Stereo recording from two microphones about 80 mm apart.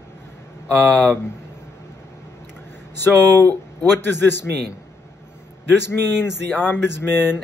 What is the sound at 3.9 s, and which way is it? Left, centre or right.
Speech, left.